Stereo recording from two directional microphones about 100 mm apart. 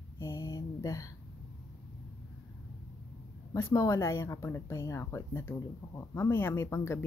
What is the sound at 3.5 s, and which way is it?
Speech, 30° left (ahead or behind).